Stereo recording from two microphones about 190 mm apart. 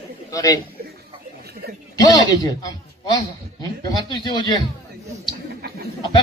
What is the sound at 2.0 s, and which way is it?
Speech, 20° left (ahead or behind).